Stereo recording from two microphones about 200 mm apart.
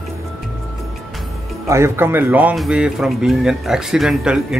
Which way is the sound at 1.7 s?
15° right (ahead or behind).